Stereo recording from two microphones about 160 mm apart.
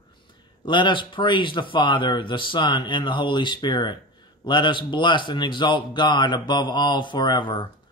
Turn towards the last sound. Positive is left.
turn(degrees=30)  # may be behind; listen again after turning